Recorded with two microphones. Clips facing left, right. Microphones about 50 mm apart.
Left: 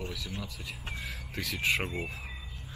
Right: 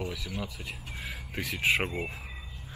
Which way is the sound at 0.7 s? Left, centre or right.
Centre.